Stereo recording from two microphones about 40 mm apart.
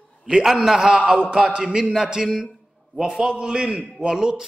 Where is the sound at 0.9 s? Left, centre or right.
Right; by 4.5 s centre.